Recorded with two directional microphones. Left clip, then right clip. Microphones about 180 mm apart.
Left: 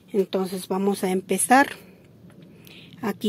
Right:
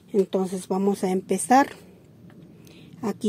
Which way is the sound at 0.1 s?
15° right (ahead or behind).